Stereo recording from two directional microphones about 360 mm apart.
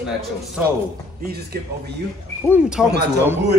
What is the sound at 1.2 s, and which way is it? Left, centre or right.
Speech, right.